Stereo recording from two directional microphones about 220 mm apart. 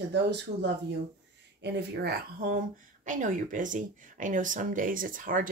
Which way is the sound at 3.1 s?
35° right (ahead or behind).